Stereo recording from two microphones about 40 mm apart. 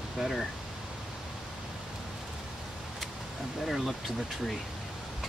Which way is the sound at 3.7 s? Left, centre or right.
Centre.